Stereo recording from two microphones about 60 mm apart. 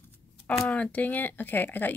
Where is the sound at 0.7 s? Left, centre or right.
Left.